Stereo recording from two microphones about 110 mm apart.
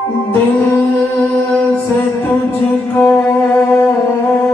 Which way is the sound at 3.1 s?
15° left (ahead or behind).